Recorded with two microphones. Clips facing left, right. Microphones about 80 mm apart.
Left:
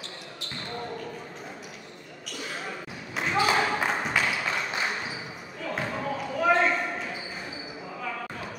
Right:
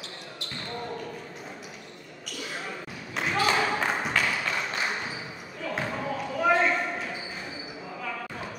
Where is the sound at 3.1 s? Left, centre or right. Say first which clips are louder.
Left 1 dB; centre.